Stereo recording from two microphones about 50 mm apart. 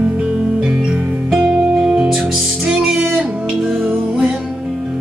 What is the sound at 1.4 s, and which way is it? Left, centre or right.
Music, centre.